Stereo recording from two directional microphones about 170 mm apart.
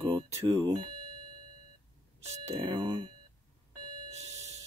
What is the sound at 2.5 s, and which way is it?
Speech, 25° right (ahead or behind).